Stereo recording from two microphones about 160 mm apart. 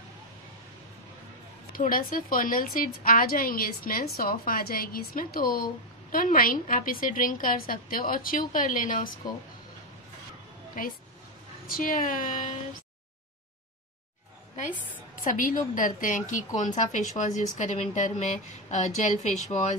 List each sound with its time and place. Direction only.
1.7 s a woman's voice: 60° left (ahead or behind)
10.8 s a woman's voice: 60° left (ahead or behind)
15.2 s a woman's voice: 60° left (ahead or behind)